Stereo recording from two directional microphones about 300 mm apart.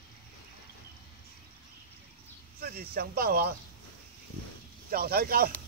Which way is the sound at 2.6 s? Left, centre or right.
Right.